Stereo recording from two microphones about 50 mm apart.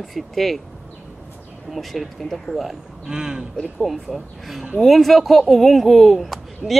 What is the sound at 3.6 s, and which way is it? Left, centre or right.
Speech, centre.